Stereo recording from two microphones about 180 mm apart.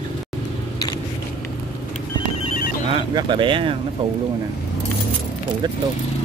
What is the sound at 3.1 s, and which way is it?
Speech, 25° right (ahead or behind).